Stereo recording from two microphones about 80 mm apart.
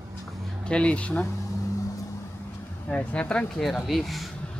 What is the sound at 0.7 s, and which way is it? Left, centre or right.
Speech, centre.